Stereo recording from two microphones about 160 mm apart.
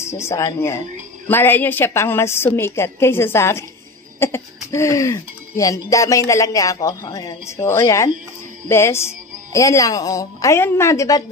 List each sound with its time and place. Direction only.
0.0 s a woman's voice: 15° left (ahead or behind)